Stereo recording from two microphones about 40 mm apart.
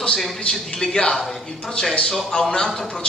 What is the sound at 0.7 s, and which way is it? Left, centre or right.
Speech, centre.